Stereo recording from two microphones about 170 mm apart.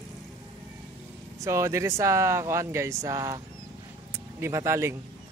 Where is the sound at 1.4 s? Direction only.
15° right (ahead or behind).